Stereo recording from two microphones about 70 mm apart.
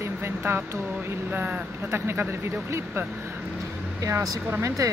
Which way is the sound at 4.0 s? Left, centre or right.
Right.